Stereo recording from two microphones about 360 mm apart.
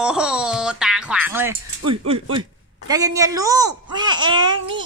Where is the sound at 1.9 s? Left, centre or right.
Centre.